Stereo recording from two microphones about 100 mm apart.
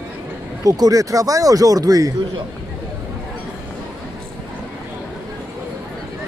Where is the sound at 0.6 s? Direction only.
35° right (ahead or behind).